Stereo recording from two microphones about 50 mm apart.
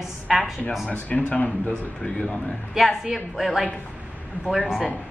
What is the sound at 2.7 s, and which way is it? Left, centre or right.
A woman's voice, centre.